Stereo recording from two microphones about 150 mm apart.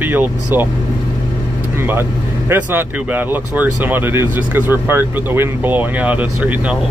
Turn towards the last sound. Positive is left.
turn(degrees=-10)  # may be behind; listen again after turning